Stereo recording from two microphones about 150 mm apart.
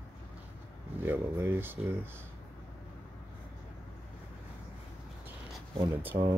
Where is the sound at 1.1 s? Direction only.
15° right (ahead or behind).